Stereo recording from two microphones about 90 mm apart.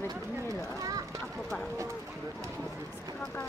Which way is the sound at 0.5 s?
40° right (ahead or behind).